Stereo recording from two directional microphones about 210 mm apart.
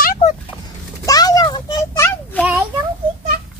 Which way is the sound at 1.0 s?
15° left (ahead or behind).